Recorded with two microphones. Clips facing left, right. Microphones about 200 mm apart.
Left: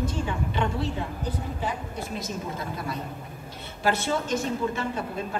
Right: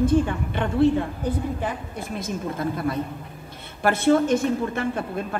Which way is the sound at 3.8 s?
55° right (ahead or behind).